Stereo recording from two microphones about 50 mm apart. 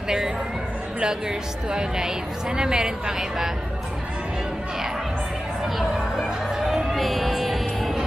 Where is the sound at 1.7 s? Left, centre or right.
Centre.